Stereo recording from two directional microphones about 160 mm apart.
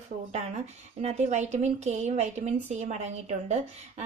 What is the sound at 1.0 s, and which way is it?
A woman's voice, 45° right (ahead or behind).